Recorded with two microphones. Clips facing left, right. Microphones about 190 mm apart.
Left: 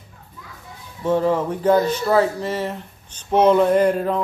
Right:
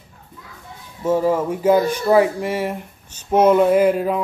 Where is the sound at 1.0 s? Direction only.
5° right (ahead or behind).